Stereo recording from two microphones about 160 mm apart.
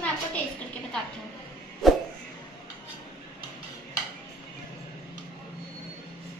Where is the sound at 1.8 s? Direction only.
Centre (ahead or behind).